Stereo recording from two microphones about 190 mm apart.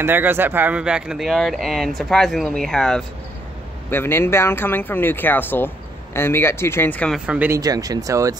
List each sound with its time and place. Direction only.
0.0 s speech: 10° right (ahead or behind); by 7.2 s 5° left (ahead or behind)
7.2 s speech: 10° right (ahead or behind)